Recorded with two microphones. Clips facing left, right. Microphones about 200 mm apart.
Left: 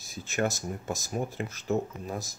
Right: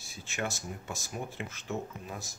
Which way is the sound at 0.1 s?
40° left (ahead or behind).